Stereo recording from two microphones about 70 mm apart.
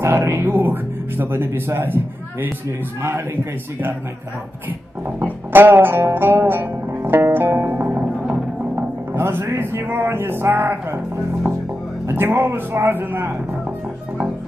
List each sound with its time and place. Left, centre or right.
0.0 s speech: right
5.2 s music: right
12.1 s speech: right